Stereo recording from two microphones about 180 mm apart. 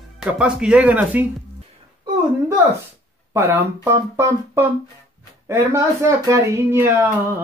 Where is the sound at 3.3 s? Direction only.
15° right (ahead or behind).